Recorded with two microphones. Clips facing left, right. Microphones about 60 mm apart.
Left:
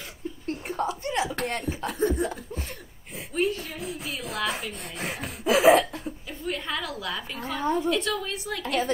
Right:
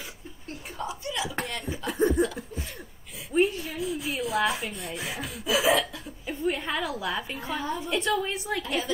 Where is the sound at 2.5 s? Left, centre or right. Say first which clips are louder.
Left 1 dB; left.